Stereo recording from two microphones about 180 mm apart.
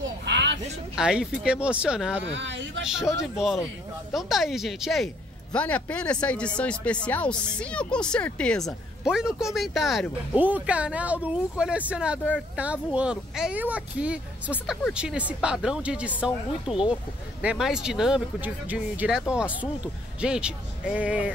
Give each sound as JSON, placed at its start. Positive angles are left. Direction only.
{"t": 0.2, "sound": "a sound", "side_deg": -75}
{"t": 0.9, "sound": "speech", "side_deg": -5}
{"t": 2.3, "sound": "speech", "side_deg": -90}
{"t": 3.2, "sound": "speech", "side_deg": 0}